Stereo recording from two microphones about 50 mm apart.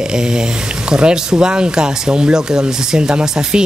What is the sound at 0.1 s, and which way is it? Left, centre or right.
Speech, centre.